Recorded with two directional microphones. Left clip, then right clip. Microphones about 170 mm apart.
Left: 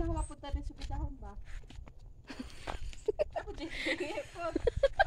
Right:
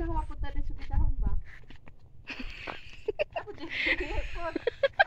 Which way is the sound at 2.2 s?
25° left (ahead or behind).